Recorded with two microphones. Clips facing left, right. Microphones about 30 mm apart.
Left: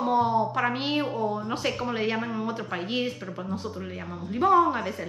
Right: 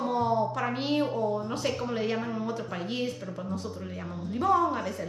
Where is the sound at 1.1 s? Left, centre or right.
Left.